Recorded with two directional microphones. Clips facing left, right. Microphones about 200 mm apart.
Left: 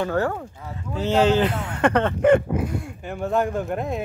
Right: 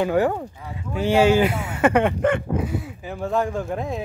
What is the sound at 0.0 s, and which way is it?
Speech, 15° right (ahead or behind).